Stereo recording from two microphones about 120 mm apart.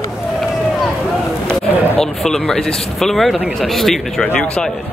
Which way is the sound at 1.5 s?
5° left (ahead or behind).